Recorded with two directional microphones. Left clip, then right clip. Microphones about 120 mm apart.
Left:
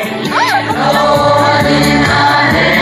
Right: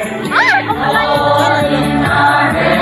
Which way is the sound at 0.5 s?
60° left (ahead or behind).